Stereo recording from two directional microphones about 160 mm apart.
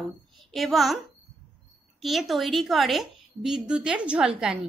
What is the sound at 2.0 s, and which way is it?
A woman's voice, centre (ahead or behind).